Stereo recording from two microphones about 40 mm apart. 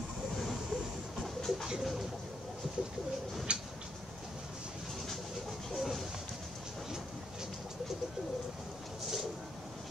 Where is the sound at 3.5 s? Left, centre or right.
Right.